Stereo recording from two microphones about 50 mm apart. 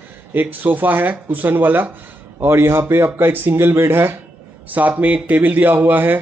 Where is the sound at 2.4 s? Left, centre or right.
Right.